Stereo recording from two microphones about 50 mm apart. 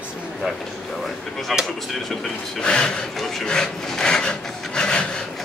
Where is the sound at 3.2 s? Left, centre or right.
Centre.